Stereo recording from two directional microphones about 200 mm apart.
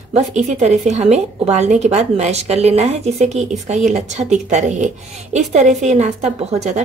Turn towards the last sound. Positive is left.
turn(degrees=-35)  # may be behind; listen again after turning